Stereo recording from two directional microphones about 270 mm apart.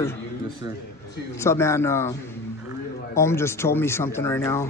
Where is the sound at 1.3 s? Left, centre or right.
Centre.